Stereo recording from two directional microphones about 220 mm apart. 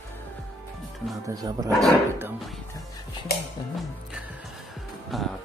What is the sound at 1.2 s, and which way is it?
Speech, 15° right (ahead or behind).